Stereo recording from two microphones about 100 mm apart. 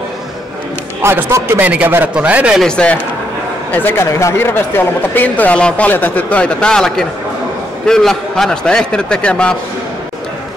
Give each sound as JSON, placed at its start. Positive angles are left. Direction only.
{"t": 1.0, "sound": "a man's voice", "side_deg": -25}
{"t": 2.6, "sound": "speech", "side_deg": 10}
{"t": 3.7, "sound": "speech", "side_deg": 20}